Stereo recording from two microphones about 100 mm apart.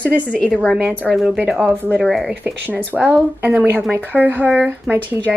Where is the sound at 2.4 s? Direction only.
15° right (ahead or behind).